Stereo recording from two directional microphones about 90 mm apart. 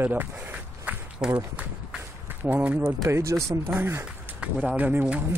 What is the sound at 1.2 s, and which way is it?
Speech, 5° right (ahead or behind).